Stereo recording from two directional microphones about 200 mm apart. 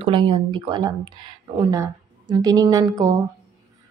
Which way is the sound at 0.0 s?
25° right (ahead or behind).